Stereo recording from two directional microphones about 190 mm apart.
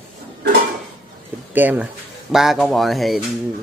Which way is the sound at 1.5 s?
10° right (ahead or behind).